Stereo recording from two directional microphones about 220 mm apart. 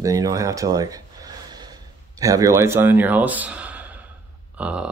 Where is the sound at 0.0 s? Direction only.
15° right (ahead or behind).